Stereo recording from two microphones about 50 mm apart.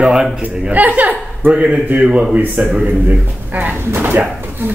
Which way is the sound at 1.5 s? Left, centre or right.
Right.